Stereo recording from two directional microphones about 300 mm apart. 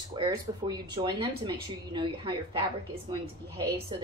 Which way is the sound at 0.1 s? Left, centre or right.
Centre.